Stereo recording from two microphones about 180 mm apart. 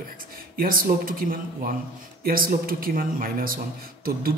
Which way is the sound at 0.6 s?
55° right (ahead or behind).